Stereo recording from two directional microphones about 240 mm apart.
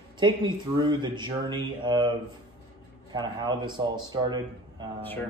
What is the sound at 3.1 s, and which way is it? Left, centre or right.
Speech, centre.